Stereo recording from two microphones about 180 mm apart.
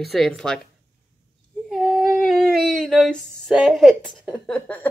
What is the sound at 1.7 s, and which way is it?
Humming, 5° right (ahead or behind).